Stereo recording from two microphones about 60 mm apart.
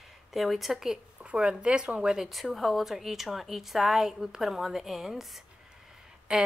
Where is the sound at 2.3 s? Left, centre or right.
Centre.